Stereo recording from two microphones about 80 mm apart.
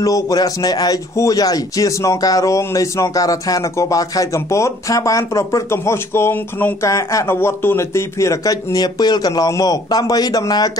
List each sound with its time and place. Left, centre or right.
0.0 s speech: left
6.8 s speech: left
7.3 s speech: left